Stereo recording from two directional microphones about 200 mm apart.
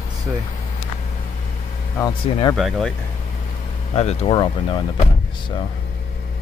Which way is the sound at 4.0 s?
30° left (ahead or behind).